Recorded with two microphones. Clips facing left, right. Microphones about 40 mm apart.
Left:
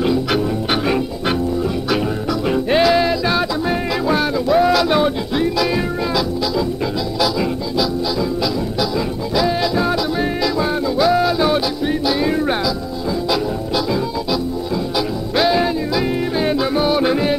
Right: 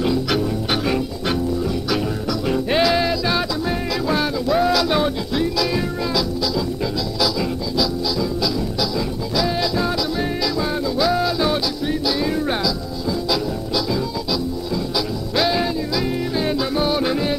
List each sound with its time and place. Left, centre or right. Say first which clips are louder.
0.0 s music: left 3 dB; centre
9.3 s music: left 4 dB; centre